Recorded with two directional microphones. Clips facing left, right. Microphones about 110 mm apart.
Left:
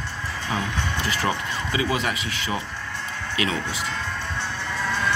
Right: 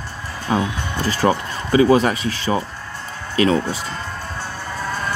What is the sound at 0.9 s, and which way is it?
Speech, 35° right (ahead or behind).